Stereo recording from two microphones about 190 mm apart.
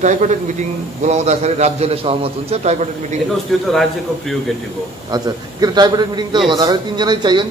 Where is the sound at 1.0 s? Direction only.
35° right (ahead or behind).